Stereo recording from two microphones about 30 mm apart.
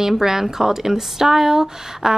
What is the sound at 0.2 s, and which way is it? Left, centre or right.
A woman's voice, centre.